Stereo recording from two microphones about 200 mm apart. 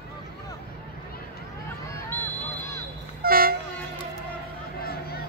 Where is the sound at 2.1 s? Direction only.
15° left (ahead or behind).